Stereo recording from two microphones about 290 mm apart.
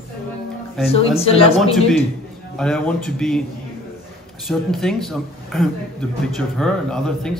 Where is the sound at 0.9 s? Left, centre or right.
Centre.